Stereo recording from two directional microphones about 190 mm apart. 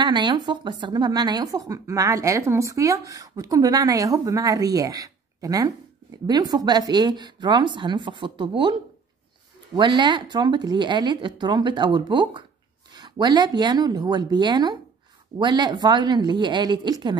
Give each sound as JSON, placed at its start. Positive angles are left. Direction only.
{"t": 0.0, "sound": "speech", "side_deg": -25}
{"t": 9.8, "sound": "speech", "side_deg": -25}